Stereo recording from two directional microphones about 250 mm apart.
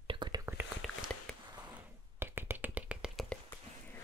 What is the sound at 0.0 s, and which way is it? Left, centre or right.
Whispering, centre.